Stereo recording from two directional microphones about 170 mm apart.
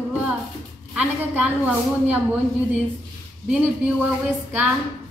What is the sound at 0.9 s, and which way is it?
A woman's voice, 5° right (ahead or behind).